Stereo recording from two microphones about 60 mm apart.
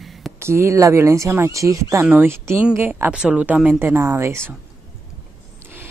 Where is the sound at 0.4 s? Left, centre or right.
Right.